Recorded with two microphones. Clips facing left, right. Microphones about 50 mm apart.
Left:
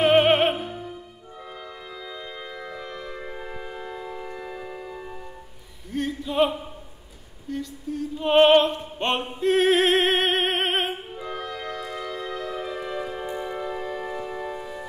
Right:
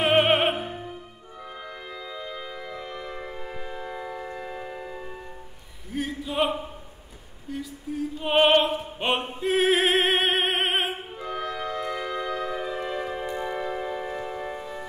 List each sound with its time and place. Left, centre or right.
0.0 s music: centre
0.6 s music: right
2.2 s organ: centre
2.7 s music: centre
3.3 s music: centre
3.9 s music: centre
5.9 s a sound: centre
7.4 s opera: centre
11.4 s music: centre
14.6 s music: centre